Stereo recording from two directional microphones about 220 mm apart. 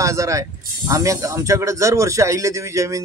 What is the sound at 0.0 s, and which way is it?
Speech, 15° right (ahead or behind).